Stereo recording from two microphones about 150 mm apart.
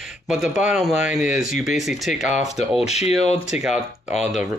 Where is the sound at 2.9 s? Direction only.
45° left (ahead or behind).